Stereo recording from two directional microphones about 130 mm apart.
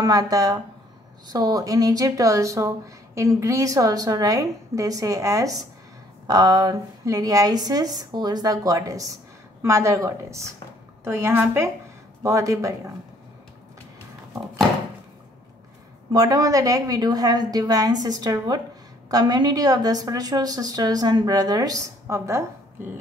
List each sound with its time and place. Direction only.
0.0 s a woman's voice: 25° right (ahead or behind)
16.1 s a woman's voice: 30° right (ahead or behind)